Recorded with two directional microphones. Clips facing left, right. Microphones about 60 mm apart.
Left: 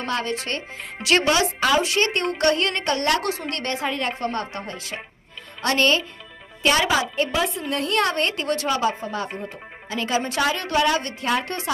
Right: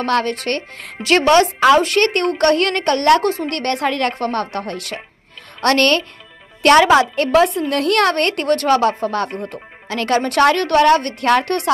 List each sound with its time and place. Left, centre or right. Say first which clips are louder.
0.0 s a woman's voice: right 8 dB; right
4.2 s a woman's voice: right 6 dB; right
7.4 s speech: right 8 dB; centre
7.7 s a woman's voice: right 3 dB; right
9.3 s speech: right 5 dB; centre
9.8 s a woman's voice: right 6 dB; right